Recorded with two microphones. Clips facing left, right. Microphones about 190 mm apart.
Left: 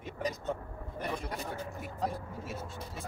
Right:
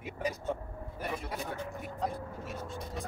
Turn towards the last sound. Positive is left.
turn(degrees=0)  # may be behind; listen again after turning